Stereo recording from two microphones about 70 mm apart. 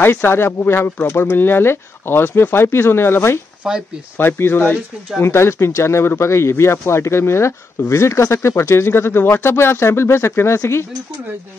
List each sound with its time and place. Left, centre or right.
0.0 s speech: left
3.6 s speech: centre
4.2 s speech: left